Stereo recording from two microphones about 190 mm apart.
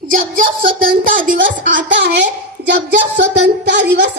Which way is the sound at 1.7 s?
70° right (ahead or behind).